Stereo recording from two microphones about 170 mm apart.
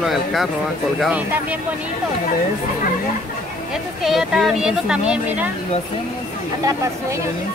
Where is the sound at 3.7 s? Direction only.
Centre (ahead or behind).